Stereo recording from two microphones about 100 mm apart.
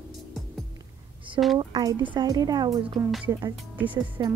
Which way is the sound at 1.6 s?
45° right (ahead or behind).